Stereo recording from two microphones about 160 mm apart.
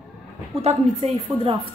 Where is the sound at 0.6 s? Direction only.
40° right (ahead or behind).